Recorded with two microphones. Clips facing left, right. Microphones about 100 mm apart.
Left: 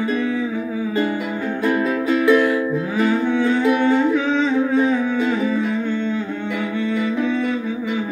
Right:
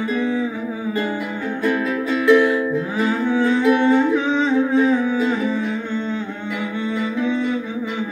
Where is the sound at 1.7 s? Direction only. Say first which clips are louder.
Left 2 dB; 5° left (ahead or behind).